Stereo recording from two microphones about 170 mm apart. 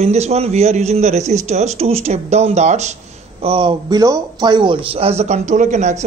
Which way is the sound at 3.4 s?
30° right (ahead or behind).